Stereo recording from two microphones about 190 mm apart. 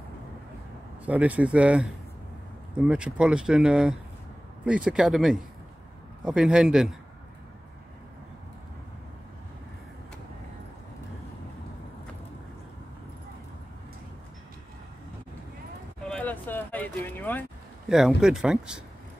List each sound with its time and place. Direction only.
1.0 s speech: 5° right (ahead or behind)
16.1 s vehicle: 10° left (ahead or behind)
17.8 s speech: centre (ahead or behind)